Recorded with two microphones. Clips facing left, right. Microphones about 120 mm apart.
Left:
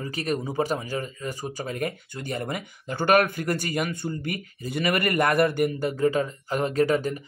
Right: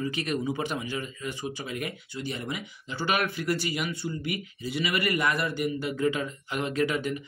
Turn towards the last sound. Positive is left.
turn(degrees=40)  # may be behind; listen again after turning